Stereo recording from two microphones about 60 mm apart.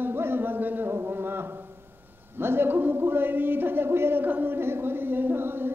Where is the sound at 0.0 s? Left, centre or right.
Right.